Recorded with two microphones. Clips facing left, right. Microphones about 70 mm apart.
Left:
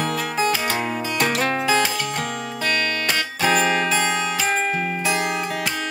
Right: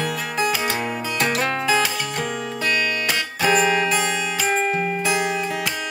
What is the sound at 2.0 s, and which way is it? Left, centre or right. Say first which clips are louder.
Music: even; centre.